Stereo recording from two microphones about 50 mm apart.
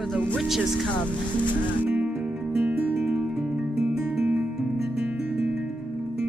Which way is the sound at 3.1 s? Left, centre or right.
Centre.